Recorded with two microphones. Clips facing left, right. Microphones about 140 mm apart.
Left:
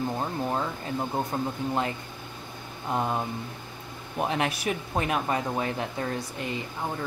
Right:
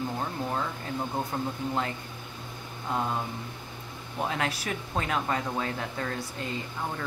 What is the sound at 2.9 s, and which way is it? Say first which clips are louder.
Speech: left 2 dB; 20° left (ahead or behind).